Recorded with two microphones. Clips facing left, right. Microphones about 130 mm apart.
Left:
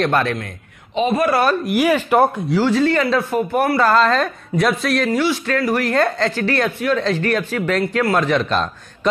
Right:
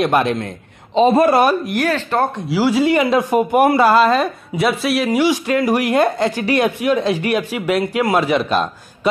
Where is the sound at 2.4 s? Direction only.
10° right (ahead or behind).